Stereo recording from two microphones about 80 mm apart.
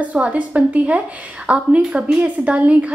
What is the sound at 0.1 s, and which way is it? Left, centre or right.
A woman's voice, centre.